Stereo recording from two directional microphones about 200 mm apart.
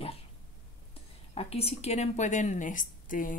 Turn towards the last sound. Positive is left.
turn(degrees=40)  # may be behind; listen again after turning